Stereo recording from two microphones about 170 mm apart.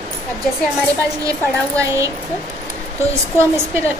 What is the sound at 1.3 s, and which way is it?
Speech, 20° right (ahead or behind).